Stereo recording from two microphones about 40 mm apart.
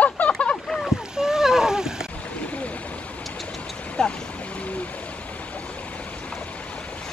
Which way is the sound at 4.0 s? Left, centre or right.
Centre.